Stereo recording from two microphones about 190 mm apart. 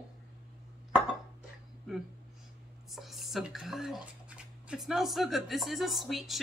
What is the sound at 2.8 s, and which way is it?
Speech, centre (ahead or behind).